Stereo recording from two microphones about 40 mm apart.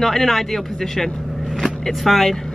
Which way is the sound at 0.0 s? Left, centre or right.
Centre.